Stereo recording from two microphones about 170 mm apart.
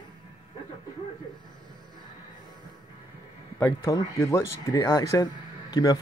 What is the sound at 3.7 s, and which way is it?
Speech, 20° left (ahead or behind).